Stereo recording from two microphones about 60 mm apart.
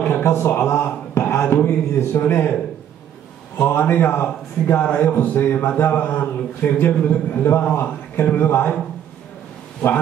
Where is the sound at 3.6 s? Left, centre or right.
Left.